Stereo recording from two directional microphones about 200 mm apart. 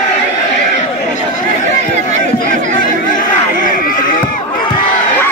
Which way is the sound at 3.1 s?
40° left (ahead or behind).